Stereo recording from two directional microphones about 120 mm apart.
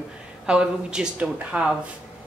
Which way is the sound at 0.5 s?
5° right (ahead or behind).